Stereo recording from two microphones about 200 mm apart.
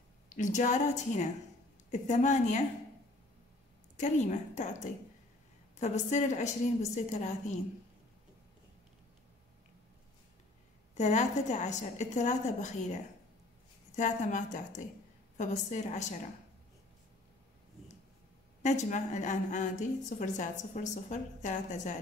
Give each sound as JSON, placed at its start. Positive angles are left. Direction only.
{"t": 0.3, "sound": "a woman's voice", "side_deg": 40}
{"t": 3.9, "sound": "a woman's voice", "side_deg": 35}
{"t": 11.0, "sound": "a woman's voice", "side_deg": 35}
{"t": 18.6, "sound": "a woman's voice", "side_deg": 35}